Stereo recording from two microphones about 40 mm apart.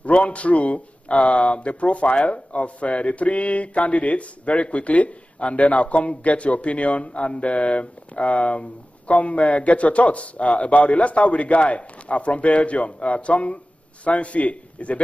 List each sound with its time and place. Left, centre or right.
0.0 s speech: left